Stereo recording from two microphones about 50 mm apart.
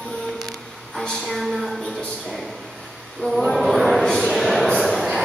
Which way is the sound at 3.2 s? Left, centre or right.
Centre.